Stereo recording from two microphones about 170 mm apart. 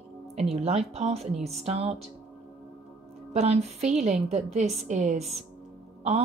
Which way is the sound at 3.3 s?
40° right (ahead or behind).